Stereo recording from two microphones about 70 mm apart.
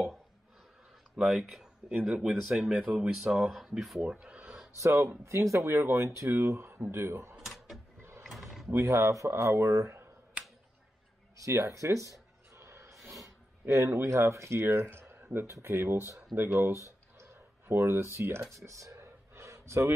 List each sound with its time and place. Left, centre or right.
1.1 s speech: centre
4.0 s speech: centre
4.7 s speech: right
7.3 s mechanisms: centre
8.2 s a sound: centre
8.6 s speech: right
11.3 s music: right
13.8 s speech: right
17.2 s computer keyboard: right
18.5 s a sound: right